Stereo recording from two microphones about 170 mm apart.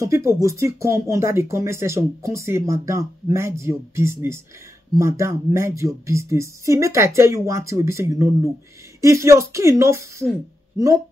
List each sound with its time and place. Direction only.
0.0 s speech: 15° right (ahead or behind)